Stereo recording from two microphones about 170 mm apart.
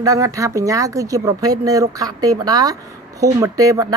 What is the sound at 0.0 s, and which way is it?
Speech, 20° right (ahead or behind).